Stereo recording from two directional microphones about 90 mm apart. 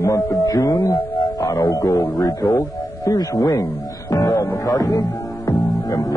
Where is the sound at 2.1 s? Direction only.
40° left (ahead or behind).